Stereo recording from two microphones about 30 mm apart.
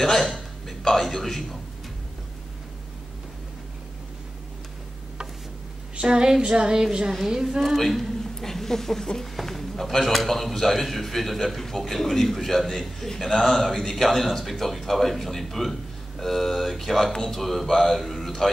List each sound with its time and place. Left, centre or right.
0.2 s a sound: centre
0.9 s speech: centre
5.9 s child singing: right
7.6 s a man's voice: centre